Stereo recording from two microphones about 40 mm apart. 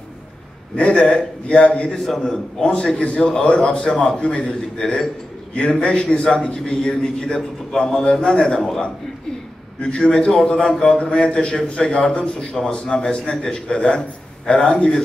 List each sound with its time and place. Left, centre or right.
0.7 s a man's voice: left
2.0 s a man's voice: centre
2.7 s a man's voice: left
9.8 s a man's voice: left